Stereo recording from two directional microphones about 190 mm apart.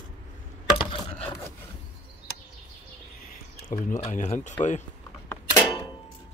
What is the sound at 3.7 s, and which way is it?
Speech, 45° left (ahead or behind).